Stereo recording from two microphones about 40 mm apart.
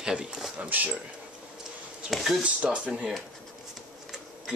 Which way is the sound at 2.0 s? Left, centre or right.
Centre.